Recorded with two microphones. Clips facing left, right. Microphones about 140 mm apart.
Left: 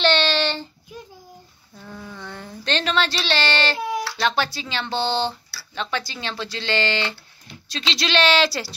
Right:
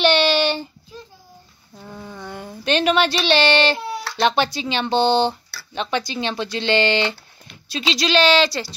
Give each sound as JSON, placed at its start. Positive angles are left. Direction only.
{"t": 0.0, "sound": "child singing", "side_deg": -10}
{"t": 1.8, "sound": "a sound", "side_deg": -15}
{"t": 4.2, "sound": "speech", "side_deg": -20}
{"t": 7.7, "sound": "a woman's voice", "side_deg": -5}